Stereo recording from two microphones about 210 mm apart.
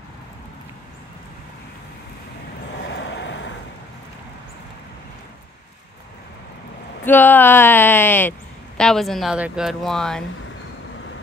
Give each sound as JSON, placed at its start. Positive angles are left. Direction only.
{"t": 2.8, "sound": "waves", "side_deg": 55}
{"t": 7.1, "sound": "speech", "side_deg": 10}